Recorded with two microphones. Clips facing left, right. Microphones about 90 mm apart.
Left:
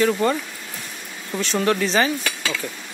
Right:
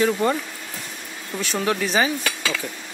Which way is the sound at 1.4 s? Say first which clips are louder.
Left 3 dB; 5° right (ahead or behind).